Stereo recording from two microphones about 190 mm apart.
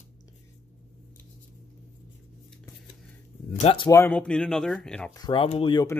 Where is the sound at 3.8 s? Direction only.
10° left (ahead or behind).